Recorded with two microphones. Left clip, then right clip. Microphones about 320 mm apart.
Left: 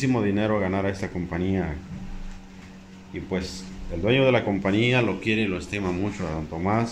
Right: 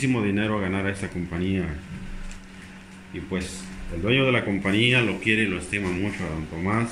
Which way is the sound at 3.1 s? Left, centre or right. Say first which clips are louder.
Left 1 dB; centre.